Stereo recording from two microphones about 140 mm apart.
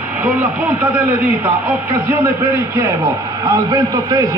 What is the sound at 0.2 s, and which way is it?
A man's voice, 10° right (ahead or behind).